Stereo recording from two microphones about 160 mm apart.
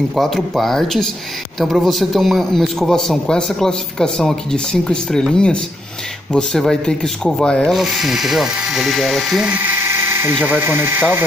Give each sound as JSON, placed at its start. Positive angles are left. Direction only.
{"t": 0.1, "sound": "speech", "side_deg": 0}